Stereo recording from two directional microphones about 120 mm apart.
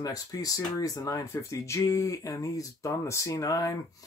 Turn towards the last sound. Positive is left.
turn(degrees=30)  # may be behind; listen again after turning